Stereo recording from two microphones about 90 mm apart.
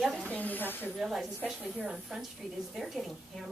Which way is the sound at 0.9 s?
Centre (ahead or behind).